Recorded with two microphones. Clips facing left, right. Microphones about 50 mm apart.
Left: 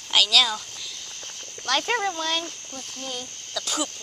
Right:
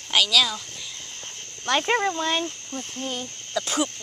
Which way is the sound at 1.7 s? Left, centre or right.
Right.